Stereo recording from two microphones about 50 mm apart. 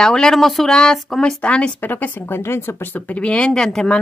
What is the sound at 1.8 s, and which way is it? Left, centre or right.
Speech, left.